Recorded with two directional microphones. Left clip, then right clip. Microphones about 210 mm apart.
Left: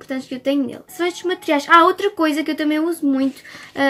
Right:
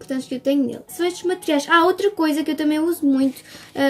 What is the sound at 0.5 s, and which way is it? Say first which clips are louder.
A woman's voice: even; 10° right (ahead or behind).